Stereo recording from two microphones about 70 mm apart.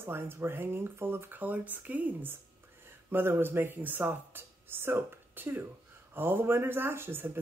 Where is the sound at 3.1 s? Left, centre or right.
Right.